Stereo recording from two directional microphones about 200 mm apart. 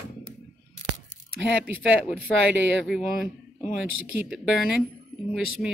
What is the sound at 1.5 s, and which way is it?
A man's voice, 5° right (ahead or behind).